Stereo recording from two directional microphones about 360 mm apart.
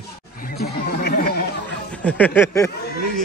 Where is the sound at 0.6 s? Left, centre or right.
Left.